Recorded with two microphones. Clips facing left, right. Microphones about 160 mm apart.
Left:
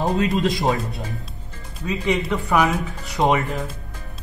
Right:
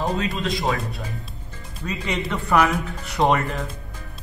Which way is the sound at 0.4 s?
20° left (ahead or behind).